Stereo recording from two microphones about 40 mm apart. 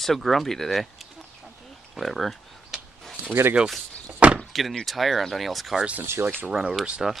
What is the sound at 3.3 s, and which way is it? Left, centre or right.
Speech, right.